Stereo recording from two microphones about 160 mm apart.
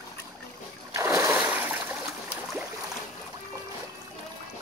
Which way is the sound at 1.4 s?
10° right (ahead or behind).